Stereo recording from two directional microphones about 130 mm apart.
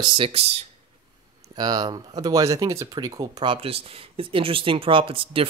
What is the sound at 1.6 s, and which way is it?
Speech, 30° right (ahead or behind).